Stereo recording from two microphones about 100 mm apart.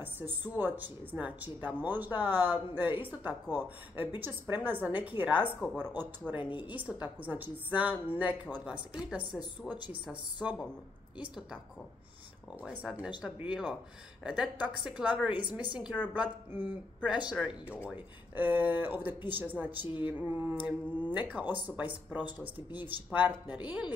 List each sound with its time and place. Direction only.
0.0 s speech: 20° right (ahead or behind)
10.4 s speech: 15° right (ahead or behind)
12.8 s speech: 10° right (ahead or behind)